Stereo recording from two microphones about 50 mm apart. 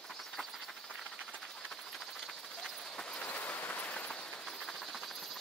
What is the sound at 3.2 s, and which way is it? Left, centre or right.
Train, left.